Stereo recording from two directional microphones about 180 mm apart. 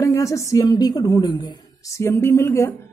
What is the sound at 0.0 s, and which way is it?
Speech, 15° left (ahead or behind).